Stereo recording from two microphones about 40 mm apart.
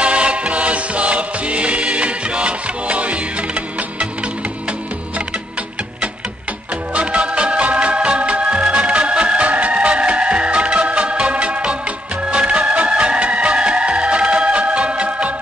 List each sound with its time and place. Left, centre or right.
0.0 s music: right
6.9 s music: right